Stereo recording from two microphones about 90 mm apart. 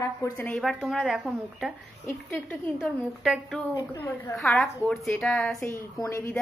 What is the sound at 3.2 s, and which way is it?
A woman's voice, centre (ahead or behind).